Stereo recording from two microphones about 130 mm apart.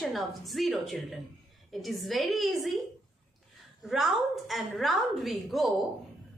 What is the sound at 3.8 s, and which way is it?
A woman's voice, centre (ahead or behind).